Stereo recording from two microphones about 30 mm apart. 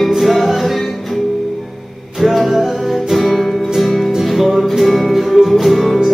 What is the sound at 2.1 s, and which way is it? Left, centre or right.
Music, centre.